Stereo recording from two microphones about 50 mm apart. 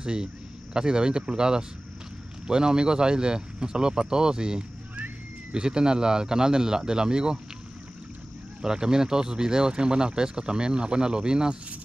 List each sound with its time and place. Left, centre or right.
0.0 s speech: centre
8.6 s speech: centre